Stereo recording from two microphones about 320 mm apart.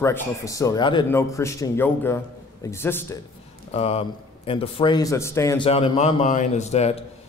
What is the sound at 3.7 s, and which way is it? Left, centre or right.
Speech, centre.